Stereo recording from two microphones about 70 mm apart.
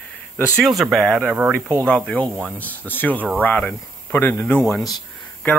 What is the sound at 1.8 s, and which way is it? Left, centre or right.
Speech, centre.